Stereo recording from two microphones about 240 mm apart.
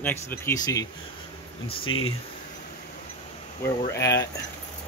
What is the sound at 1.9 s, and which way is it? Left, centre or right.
Speech, left.